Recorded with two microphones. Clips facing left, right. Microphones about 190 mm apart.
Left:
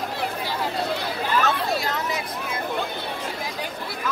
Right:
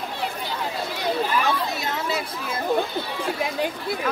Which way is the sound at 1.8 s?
30° right (ahead or behind).